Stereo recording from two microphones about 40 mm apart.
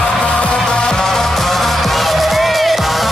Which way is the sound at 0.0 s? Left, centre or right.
Left.